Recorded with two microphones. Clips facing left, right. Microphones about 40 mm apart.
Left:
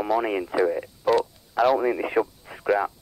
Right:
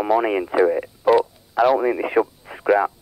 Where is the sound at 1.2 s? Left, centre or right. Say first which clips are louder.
Right 4 dB; centre.